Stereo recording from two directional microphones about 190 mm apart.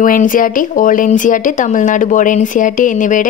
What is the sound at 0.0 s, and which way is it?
Speech, 45° left (ahead or behind).